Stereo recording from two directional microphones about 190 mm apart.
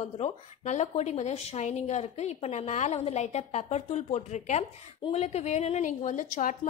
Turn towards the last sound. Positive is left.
turn(degrees=45)  # may be behind; listen again after turning